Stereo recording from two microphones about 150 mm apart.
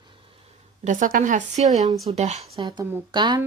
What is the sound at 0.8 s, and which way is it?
Speech, 60° right (ahead or behind).